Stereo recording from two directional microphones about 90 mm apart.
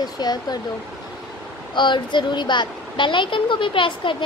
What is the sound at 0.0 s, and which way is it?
Speech, 50° left (ahead or behind).